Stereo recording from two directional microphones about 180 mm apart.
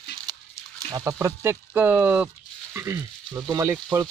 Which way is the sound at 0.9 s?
15° right (ahead or behind).